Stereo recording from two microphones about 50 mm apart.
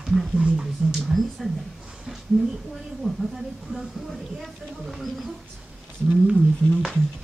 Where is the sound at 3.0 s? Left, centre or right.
Centre.